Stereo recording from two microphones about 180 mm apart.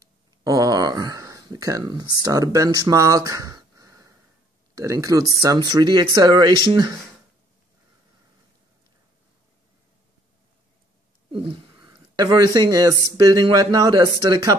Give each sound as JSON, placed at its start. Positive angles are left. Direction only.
{"t": 0.4, "sound": "a sound", "side_deg": -20}
{"t": 4.7, "sound": "speech", "side_deg": -20}
{"t": 11.3, "sound": "speech", "side_deg": -25}